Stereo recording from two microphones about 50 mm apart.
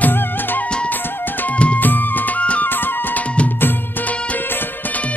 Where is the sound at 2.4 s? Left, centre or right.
Left.